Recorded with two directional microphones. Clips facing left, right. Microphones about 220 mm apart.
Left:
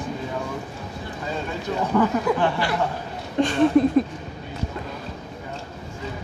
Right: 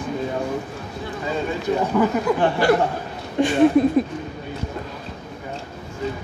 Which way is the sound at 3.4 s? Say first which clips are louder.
Right 3 dB; 5° right (ahead or behind).